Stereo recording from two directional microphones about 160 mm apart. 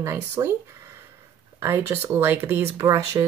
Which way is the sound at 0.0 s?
15° right (ahead or behind).